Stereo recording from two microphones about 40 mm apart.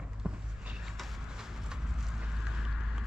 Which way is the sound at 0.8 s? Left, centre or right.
Centre.